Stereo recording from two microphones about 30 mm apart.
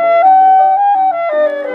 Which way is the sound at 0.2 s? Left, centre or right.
Centre.